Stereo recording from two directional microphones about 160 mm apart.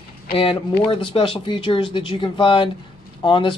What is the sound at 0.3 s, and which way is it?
Speech, 35° left (ahead or behind).